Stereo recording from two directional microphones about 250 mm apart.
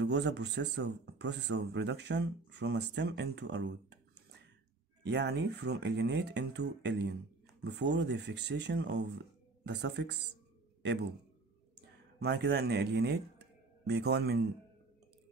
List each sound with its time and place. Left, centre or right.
0.0 s speech: right
12.2 s speech: right